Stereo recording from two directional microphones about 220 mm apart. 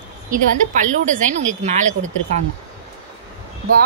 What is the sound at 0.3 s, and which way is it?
A woman's voice, 35° right (ahead or behind).